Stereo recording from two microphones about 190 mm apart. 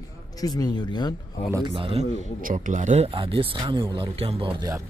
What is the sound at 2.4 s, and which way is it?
Speech, 40° right (ahead or behind).